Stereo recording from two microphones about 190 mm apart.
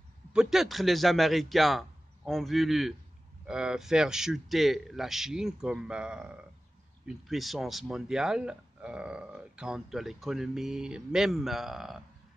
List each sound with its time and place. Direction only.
0.3 s speech: 5° right (ahead or behind)